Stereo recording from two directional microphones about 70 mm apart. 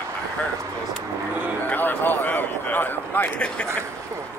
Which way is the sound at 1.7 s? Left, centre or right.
Left.